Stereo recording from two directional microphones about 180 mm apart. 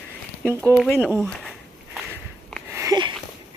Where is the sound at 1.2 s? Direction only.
5° left (ahead or behind).